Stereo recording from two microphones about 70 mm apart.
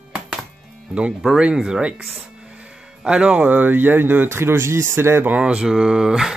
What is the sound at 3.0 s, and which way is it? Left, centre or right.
Speech, centre.